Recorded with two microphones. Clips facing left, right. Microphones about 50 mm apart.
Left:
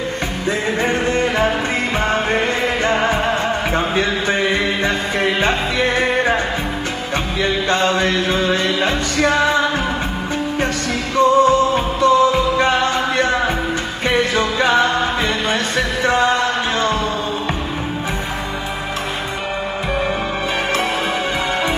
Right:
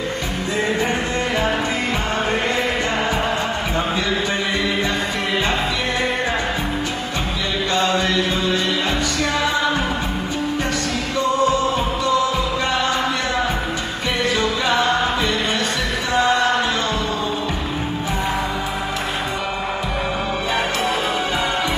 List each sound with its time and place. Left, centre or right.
2.9 s music: left
3.7 s a sound: left
7.7 s music: left
11.1 s music: left
14.3 s music: left